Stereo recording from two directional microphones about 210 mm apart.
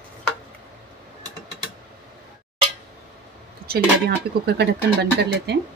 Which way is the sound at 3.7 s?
50° right (ahead or behind).